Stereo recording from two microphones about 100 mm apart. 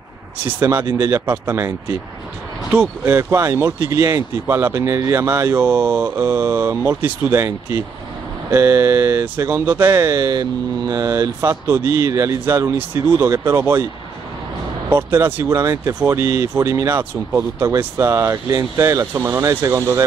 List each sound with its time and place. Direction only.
0.6 s speech: 25° right (ahead or behind)
2.7 s speech: 20° right (ahead or behind)
10.1 s speech: 45° right (ahead or behind); by 13.8 s 25° right (ahead or behind)
14.9 s speech: 20° right (ahead or behind)